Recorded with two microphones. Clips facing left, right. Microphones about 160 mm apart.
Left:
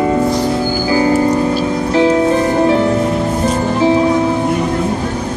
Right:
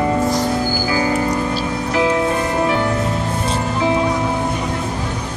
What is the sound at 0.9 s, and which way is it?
Music, 30° left (ahead or behind).